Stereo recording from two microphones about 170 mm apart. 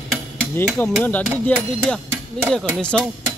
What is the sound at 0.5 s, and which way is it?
Hammer, 10° left (ahead or behind).